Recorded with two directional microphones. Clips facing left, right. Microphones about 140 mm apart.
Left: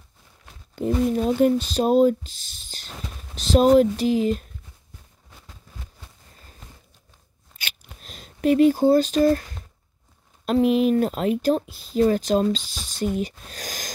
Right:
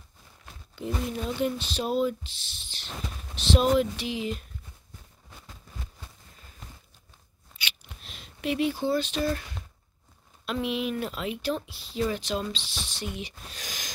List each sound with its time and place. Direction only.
0.7 s speech: 45° left (ahead or behind)
7.5 s a sound: 45° left (ahead or behind)
10.4 s speech: 40° left (ahead or behind)